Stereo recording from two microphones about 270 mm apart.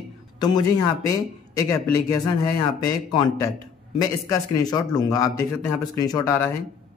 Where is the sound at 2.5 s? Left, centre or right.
Centre.